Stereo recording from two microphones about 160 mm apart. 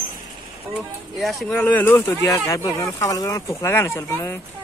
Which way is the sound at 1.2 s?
5° left (ahead or behind).